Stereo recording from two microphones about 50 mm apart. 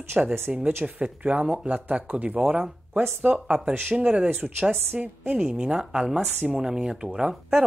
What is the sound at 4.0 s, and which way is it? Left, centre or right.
Speech, right.